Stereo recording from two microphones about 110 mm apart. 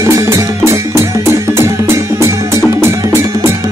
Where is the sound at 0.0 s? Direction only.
25° right (ahead or behind).